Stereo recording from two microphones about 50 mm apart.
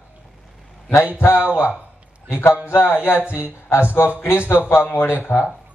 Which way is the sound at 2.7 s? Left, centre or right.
Left.